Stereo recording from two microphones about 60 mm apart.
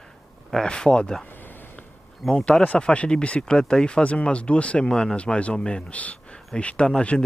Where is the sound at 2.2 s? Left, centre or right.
Centre.